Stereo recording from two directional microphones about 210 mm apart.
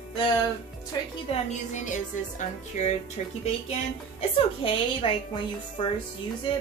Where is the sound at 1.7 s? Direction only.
35° left (ahead or behind).